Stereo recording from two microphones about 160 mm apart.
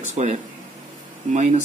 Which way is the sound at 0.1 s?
45° right (ahead or behind).